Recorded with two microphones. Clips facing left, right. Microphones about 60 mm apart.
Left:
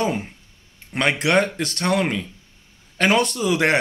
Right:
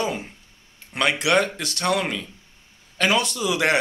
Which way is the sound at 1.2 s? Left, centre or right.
Left.